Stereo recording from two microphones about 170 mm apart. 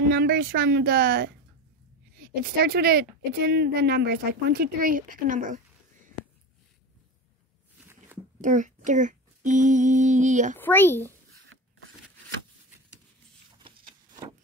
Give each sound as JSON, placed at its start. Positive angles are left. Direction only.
{"t": 0.1, "sound": "speech", "side_deg": -65}
{"t": 8.4, "sound": "speech", "side_deg": -50}
{"t": 10.6, "sound": "speech", "side_deg": 10}
{"t": 13.6, "sound": "a sound", "side_deg": -25}